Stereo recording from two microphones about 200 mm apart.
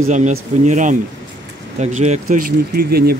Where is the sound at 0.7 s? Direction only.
40° right (ahead or behind).